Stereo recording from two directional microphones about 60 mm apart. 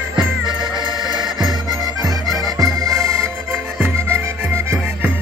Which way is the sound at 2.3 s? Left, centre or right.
Right.